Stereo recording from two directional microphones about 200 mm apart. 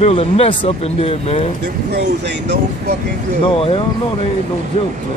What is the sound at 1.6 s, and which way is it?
Speech, 55° right (ahead or behind).